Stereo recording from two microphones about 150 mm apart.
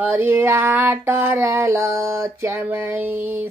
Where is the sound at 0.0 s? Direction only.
15° right (ahead or behind).